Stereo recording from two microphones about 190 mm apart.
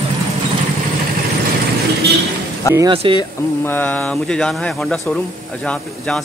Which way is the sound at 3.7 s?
10° left (ahead or behind).